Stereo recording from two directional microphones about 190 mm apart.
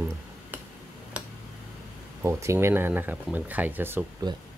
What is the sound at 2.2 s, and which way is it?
Speech, 15° right (ahead or behind).